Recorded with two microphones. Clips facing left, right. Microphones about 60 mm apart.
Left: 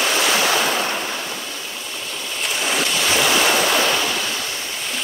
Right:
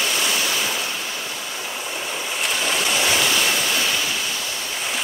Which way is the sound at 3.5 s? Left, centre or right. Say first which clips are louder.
Left 5 dB; left.